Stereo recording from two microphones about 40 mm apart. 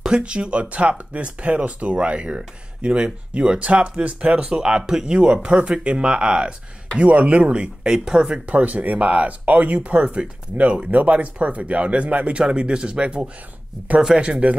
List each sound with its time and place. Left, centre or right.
0.1 s speech: right
5.1 s speech: right
7.0 s speech: right
7.8 s speech: centre
8.5 s speech: right